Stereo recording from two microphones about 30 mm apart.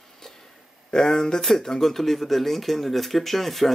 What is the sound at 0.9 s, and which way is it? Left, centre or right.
Speech, centre.